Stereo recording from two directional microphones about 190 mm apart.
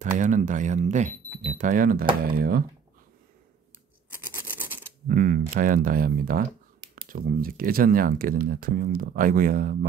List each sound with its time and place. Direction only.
0.2 s speech: 40° right (ahead or behind)
4.2 s toothbrush: 10° right (ahead or behind)
5.0 s speech: 45° right (ahead or behind)